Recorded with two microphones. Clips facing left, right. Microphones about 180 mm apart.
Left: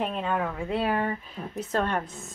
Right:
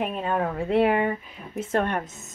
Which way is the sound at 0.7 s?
20° right (ahead or behind).